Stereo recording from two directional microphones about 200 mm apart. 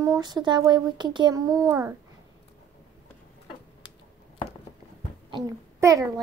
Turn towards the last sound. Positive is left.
turn(degrees=-15)  # may be behind; listen again after turning